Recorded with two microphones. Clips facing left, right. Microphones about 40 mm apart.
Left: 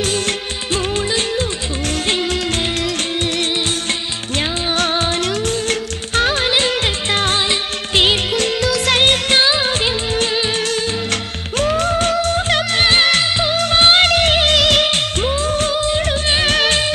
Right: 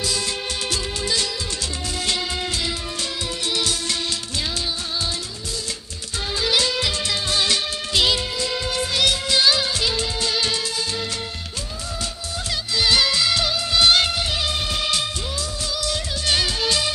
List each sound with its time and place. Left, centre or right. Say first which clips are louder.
4.7 s music: left 10 dB; left
8.4 s music: left 7 dB; left
8.9 s music: left 5 dB; left
11.1 s music: left 7 dB; left
14.0 s music: left 10 dB; left
14.6 s music: left 11 dB; left
14.9 s music of bollywood: left 7 dB; left
16.4 s music: left 7 dB; left